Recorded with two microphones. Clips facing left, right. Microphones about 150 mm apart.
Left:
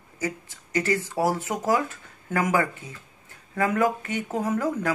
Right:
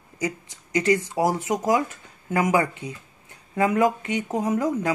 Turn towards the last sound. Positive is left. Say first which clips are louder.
# right 2 dB
turn(degrees=-15)  # may be behind; listen again after turning